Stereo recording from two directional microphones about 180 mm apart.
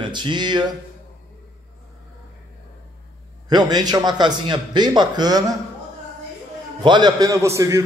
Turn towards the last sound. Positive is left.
turn(degrees=-15)  # may be behind; listen again after turning